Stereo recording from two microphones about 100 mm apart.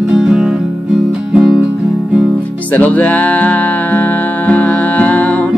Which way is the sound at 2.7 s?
15° left (ahead or behind).